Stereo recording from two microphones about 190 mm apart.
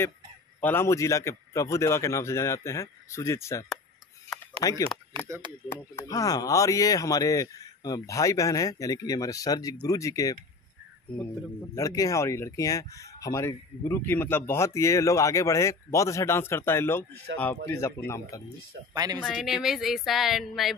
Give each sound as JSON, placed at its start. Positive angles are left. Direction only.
{"t": 0.6, "sound": "speech", "side_deg": 10}
{"t": 11.7, "sound": "speech", "side_deg": 15}
{"t": 18.9, "sound": "speech", "side_deg": -20}
{"t": 19.2, "sound": "speech", "side_deg": 0}